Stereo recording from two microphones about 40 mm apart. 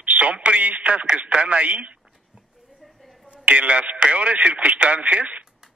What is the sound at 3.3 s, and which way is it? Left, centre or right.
Speech, right.